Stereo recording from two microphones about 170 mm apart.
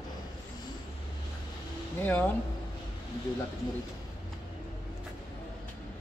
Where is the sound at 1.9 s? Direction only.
10° left (ahead or behind).